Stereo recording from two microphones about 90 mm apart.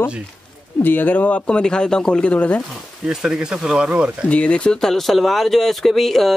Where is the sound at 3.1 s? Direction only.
5° right (ahead or behind).